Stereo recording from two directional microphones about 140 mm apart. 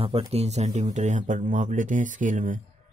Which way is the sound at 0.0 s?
40° right (ahead or behind).